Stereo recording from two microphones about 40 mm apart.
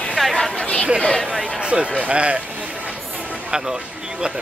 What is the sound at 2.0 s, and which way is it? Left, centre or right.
Speech, right.